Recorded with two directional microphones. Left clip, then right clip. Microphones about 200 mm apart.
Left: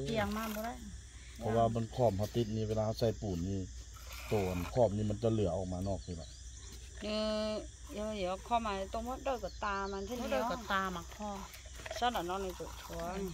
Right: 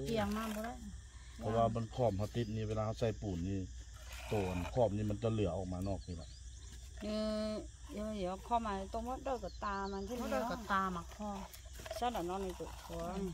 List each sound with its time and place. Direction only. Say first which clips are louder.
0.1 s speech: left 2 dB; 55° right (ahead or behind)
1.5 s speech: left 2 dB; 45° left (ahead or behind)
4.7 s speech: left 3 dB; 50° left (ahead or behind)
7.0 s speech: left 3 dB; 55° right (ahead or behind)
12.9 s speech: left 2 dB; 55° right (ahead or behind)